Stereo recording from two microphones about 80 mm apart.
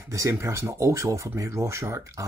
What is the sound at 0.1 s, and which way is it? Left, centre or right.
Speech, right.